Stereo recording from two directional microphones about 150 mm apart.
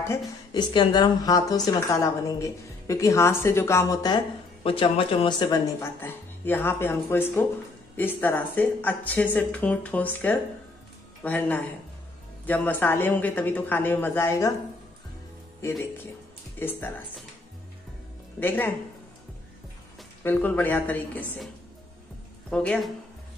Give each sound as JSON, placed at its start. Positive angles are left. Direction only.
{"t": 0.5, "sound": "a woman's voice", "side_deg": 30}
{"t": 4.6, "sound": "speech", "side_deg": 40}
{"t": 5.8, "sound": "speech", "side_deg": 15}
{"t": 16.5, "sound": "speech", "side_deg": 15}
{"t": 20.2, "sound": "speech", "side_deg": 10}
{"t": 22.5, "sound": "speech", "side_deg": 5}